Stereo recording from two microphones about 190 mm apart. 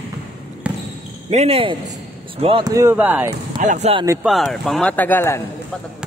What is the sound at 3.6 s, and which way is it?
Speech, 40° right (ahead or behind).